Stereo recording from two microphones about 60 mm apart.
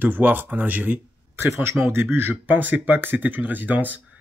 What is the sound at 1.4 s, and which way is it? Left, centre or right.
Speech, right.